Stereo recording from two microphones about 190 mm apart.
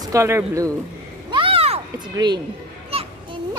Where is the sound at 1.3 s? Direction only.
30° right (ahead or behind).